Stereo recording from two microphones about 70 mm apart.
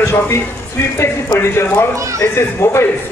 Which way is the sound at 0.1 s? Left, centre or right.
Left.